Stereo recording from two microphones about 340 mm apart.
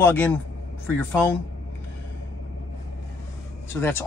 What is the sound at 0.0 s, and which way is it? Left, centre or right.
Speech, centre.